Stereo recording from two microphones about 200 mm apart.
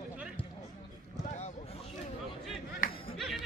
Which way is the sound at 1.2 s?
35° left (ahead or behind).